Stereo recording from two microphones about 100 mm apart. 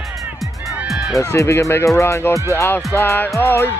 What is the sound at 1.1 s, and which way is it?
Speech, 30° left (ahead or behind).